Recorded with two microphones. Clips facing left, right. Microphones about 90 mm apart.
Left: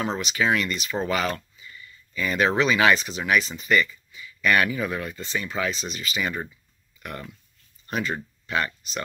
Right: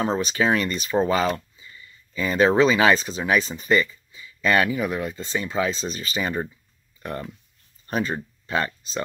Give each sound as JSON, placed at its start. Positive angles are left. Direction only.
{"t": 0.0, "sound": "speech", "side_deg": -35}